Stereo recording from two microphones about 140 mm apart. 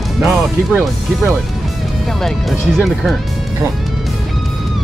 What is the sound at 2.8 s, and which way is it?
Speech, centre (ahead or behind).